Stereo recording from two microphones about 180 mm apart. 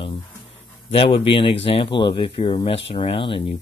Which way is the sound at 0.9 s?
30° left (ahead or behind).